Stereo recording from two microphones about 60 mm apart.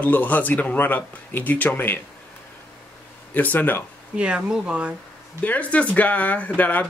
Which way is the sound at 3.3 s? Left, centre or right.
Left.